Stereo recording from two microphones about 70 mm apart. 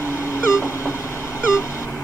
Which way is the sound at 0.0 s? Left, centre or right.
Left.